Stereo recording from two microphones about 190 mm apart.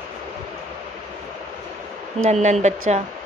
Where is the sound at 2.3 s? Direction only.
40° right (ahead or behind).